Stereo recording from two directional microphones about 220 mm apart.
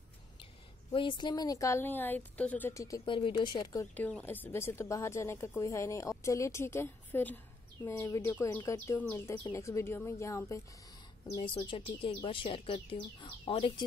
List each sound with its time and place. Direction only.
0.9 s speech: 20° left (ahead or behind)
3.9 s speech: 5° left (ahead or behind)